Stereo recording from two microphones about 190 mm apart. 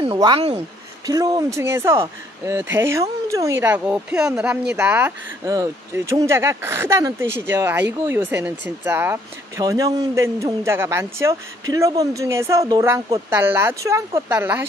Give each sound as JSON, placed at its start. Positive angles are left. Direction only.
{"t": 0.0, "sound": "speech", "side_deg": -25}